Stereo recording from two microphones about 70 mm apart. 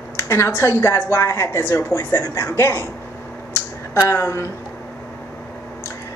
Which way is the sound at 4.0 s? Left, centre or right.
Left.